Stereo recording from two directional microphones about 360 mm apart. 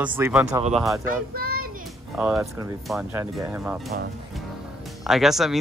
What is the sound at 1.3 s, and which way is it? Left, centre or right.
Child singing, right.